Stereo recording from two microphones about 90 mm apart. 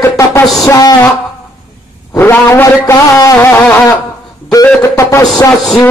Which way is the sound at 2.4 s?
30° left (ahead or behind).